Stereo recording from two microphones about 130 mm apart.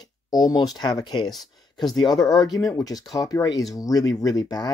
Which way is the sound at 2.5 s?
25° left (ahead or behind).